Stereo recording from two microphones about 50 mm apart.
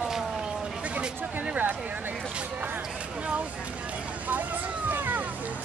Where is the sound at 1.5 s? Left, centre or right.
Right.